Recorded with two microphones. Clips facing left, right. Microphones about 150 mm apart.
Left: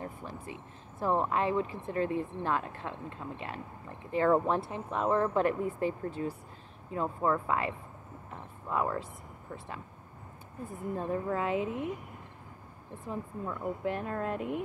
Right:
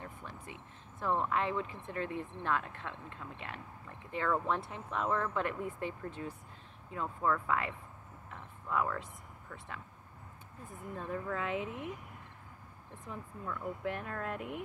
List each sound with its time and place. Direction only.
0.0 s speech: 35° left (ahead or behind)
8.3 s a sound: 30° left (ahead or behind)
11.0 s speech: 30° left (ahead or behind)
13.0 s speech: 25° left (ahead or behind)